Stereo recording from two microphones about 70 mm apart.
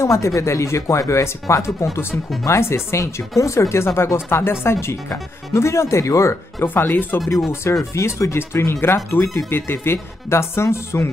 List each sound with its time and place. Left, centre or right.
0.0 s speech: left
6.6 s speech: left
7.9 s speech: left